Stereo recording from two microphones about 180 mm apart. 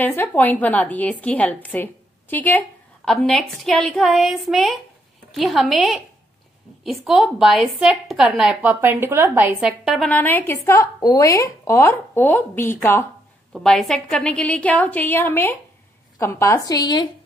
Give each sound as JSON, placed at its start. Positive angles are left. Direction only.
{"t": 0.0, "sound": "a woman's voice", "side_deg": 10}
{"t": 13.5, "sound": "a woman's voice", "side_deg": 0}